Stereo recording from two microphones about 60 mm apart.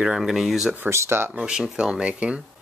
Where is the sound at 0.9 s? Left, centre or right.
Right.